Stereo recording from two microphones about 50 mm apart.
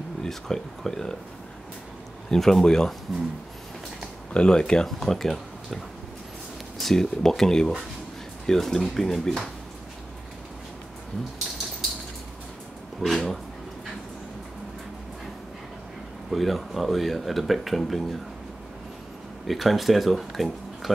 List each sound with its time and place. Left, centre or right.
0.2 s speech: centre
2.3 s speech: centre
4.3 s speech: centre
6.8 s speech: centre
13.0 s speech: centre
16.3 s speech: centre
19.4 s speech: centre